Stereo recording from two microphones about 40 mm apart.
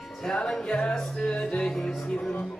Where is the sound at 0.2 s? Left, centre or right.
Centre.